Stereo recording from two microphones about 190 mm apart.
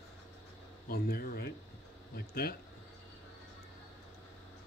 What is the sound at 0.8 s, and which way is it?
A man's voice, 50° left (ahead or behind).